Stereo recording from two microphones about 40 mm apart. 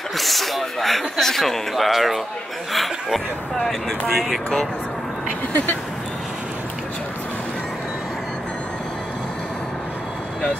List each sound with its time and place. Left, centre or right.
0.2 s speech: centre
1.9 s speech: centre